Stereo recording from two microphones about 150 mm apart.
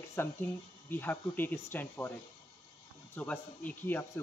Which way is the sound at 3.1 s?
10° left (ahead or behind).